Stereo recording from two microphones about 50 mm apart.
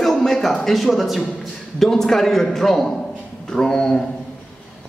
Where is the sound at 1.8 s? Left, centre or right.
Centre.